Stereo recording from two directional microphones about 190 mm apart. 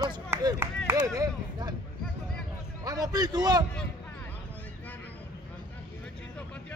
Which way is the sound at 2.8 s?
20° right (ahead or behind).